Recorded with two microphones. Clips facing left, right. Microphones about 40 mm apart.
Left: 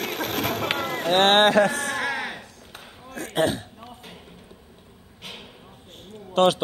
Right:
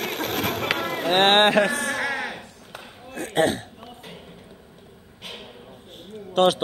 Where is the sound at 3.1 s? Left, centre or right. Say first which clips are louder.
Right 2 dB; centre.